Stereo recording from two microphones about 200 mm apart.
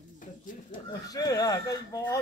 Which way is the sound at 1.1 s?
20° left (ahead or behind).